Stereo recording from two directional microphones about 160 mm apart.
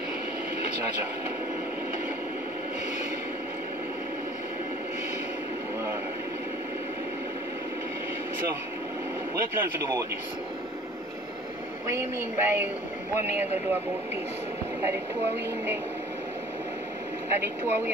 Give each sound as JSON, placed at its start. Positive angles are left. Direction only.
{"t": 9.3, "sound": "speech", "side_deg": -15}
{"t": 11.9, "sound": "speech", "side_deg": -10}
{"t": 17.3, "sound": "speech", "side_deg": -15}